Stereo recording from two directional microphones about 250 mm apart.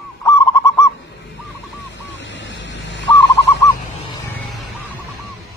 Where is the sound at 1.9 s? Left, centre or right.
Left.